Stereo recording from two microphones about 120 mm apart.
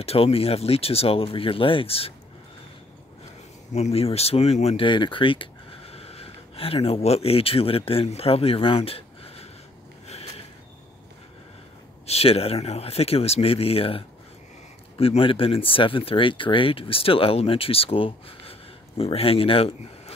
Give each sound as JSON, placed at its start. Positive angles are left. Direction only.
{"t": 0.0, "sound": "speech", "side_deg": 55}
{"t": 3.7, "sound": "speech", "side_deg": 60}
{"t": 4.8, "sound": "speech", "side_deg": 40}
{"t": 12.1, "sound": "speech", "side_deg": 55}